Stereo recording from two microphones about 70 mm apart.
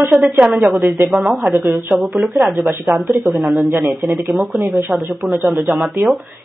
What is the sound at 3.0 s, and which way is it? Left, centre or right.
Speech, right.